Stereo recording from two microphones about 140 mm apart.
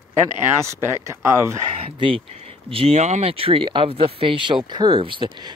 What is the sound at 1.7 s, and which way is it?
Speech, 40° right (ahead or behind).